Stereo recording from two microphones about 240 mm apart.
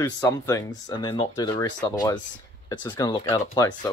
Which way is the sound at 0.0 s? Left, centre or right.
Centre.